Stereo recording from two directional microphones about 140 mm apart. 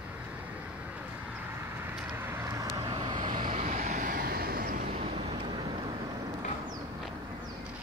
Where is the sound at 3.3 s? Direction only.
70° right (ahead or behind); by 4.8 s 90° right.